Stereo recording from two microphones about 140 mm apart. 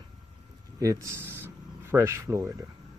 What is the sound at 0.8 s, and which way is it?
Speech, 25° right (ahead or behind).